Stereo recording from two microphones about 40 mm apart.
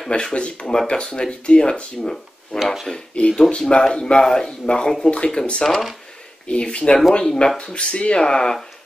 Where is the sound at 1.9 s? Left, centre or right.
Centre.